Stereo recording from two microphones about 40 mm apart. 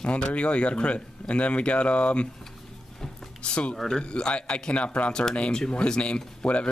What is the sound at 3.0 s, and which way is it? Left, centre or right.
Music, left.